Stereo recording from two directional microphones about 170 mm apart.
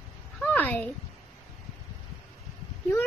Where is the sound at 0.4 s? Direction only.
10° left (ahead or behind).